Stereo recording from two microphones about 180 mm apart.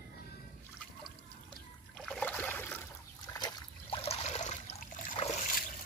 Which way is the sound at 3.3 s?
25° left (ahead or behind).